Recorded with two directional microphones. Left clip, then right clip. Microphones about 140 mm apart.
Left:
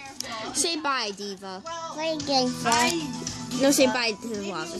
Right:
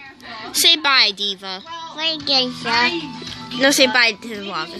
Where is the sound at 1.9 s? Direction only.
15° left (ahead or behind).